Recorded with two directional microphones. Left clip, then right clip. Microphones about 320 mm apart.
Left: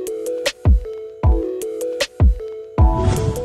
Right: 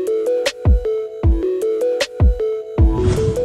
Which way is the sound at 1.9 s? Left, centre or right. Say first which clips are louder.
Right 3 dB; centre.